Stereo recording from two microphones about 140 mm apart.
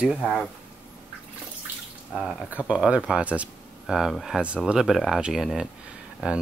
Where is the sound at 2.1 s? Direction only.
Centre (ahead or behind).